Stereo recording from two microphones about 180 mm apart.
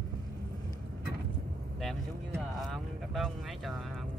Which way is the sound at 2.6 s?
Centre (ahead or behind).